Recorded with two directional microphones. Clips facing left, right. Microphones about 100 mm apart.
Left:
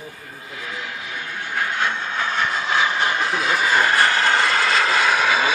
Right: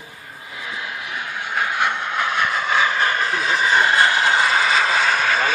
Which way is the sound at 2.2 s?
55° right (ahead or behind).